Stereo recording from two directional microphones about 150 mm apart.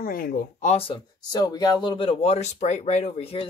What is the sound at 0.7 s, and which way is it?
Speech, 40° left (ahead or behind).